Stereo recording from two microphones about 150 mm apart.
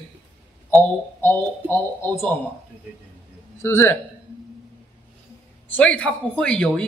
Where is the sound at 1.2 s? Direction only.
15° left (ahead or behind).